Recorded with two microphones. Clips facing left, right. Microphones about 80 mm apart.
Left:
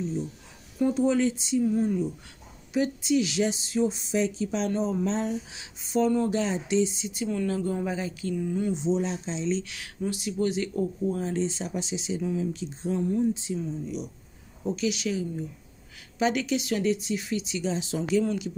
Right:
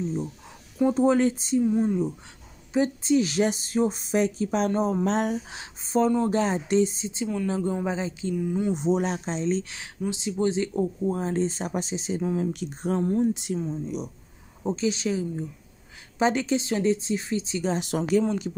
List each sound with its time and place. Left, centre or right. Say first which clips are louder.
0.9 s speech: right 4 dB; right
1.6 s speech: right 2 dB; right
5.0 s speech: right 3 dB; right
7.4 s speech: right 3 dB; right
8.7 s speech: right 2 dB; right
9.8 s speech: right 1 dB; right
12.5 s speech: right 2 dB; right
13.3 s speech: right 2 dB; right
13.6 s speech: right 2 dB; right
17.6 s speech: right 3 dB; right
18.2 s speech: right 2 dB; right